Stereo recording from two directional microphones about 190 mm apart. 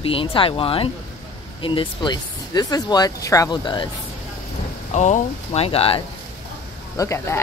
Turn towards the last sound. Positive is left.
turn(degrees=15)  # may be behind; listen again after turning